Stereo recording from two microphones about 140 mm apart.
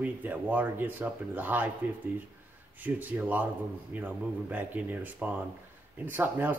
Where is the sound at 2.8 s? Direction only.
10° right (ahead or behind).